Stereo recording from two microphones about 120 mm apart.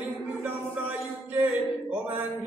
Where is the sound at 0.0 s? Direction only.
15° right (ahead or behind).